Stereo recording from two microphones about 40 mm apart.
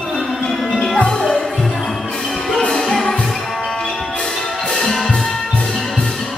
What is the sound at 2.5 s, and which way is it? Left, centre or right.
Music, centre.